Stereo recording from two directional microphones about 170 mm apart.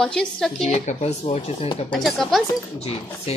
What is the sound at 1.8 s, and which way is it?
Speech, centre (ahead or behind).